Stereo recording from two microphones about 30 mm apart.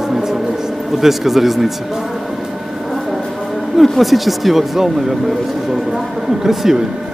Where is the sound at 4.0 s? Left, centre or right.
Centre.